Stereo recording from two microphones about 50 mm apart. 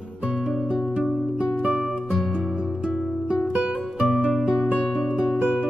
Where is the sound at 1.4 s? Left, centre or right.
Centre.